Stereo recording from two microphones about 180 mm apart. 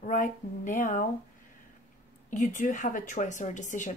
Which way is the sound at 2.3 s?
45° left (ahead or behind).